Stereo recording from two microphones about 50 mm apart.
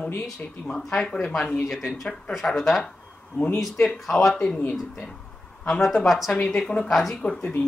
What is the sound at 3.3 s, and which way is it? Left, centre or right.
Speech, left.